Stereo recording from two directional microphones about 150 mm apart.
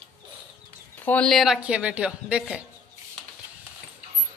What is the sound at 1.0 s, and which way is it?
A man's voice, 10° left (ahead or behind).